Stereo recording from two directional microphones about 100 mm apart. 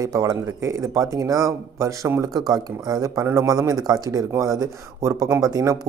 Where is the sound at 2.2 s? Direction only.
40° right (ahead or behind).